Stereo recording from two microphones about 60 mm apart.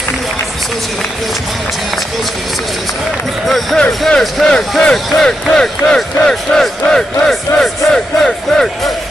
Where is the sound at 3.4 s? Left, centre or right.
Centre.